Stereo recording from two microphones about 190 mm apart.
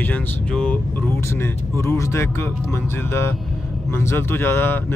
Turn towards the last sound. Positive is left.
turn(degrees=10)  # may be behind; listen again after turning